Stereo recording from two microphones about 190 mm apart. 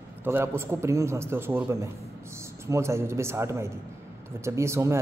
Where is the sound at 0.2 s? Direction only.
10° right (ahead or behind).